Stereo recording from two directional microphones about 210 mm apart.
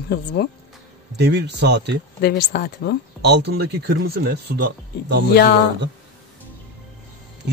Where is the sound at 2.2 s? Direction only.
50° left (ahead or behind).